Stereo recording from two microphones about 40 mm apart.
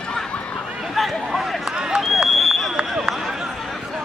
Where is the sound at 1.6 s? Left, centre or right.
Right.